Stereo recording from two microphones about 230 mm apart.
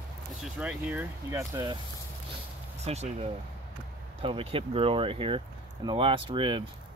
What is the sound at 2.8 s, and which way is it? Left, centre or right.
Speech, right.